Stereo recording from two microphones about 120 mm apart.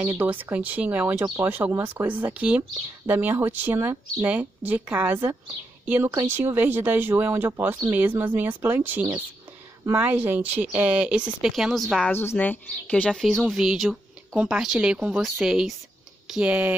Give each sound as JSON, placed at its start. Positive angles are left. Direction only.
{"t": 0.0, "sound": "speech", "side_deg": -15}
{"t": 12.1, "sound": "speech", "side_deg": 20}